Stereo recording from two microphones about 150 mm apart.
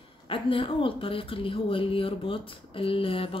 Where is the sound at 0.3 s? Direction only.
35° left (ahead or behind).